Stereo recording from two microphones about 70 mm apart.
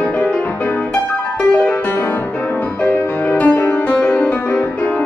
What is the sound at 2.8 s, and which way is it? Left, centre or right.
Music, left.